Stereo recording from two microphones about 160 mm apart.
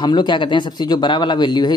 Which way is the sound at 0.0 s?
25° left (ahead or behind).